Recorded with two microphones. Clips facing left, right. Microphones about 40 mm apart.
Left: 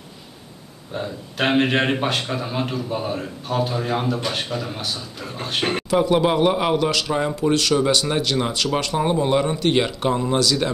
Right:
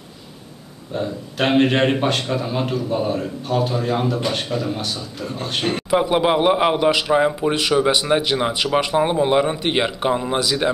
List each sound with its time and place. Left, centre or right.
0.9 s speech: centre
5.9 s speech: centre